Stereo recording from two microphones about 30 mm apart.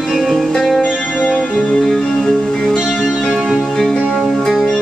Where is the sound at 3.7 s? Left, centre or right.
Centre.